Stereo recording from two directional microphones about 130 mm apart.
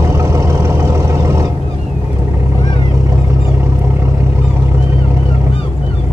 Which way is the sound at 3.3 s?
20° right (ahead or behind).